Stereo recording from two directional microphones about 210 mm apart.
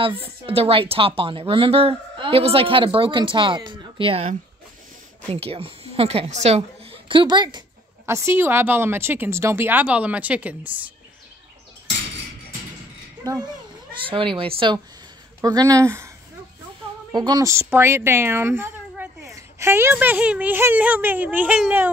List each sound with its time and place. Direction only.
0.0 s a woman's voice: 25° right (ahead or behind); by 10.9 s 5° right (ahead or behind)
13.2 s a child's voice: 15° right (ahead or behind)
17.1 s a woman's voice: 20° right (ahead or behind)